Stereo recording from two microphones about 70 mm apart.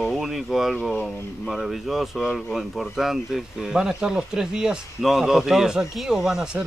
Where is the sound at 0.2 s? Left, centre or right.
Centre.